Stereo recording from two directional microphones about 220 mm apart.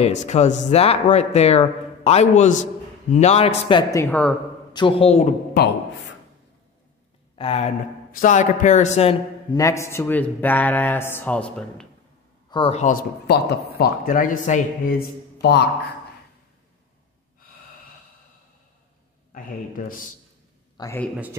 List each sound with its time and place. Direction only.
0.0 s speech: 30° left (ahead or behind)
4.0 s a man's voice: 5° left (ahead or behind)
4.7 s speech: 25° left (ahead or behind)
5.6 s speech: 45° left (ahead or behind)
7.3 s speech: 25° left (ahead or behind)
9.5 s a man's voice: 15° left (ahead or behind)
12.4 s speech: 25° left (ahead or behind)
19.3 s speech: 40° left (ahead or behind)
20.7 s a man's voice: 15° left (ahead or behind)